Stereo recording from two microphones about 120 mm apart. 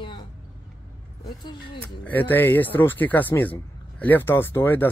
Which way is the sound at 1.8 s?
15° left (ahead or behind).